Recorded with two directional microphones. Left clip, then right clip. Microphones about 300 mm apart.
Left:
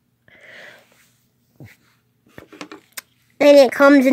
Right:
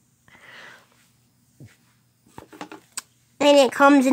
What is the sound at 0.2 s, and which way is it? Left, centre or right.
Wheeze, centre.